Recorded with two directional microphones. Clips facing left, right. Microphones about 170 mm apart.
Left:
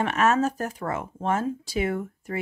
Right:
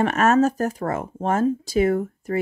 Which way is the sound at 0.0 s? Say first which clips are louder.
Right 5 dB; 45° right (ahead or behind).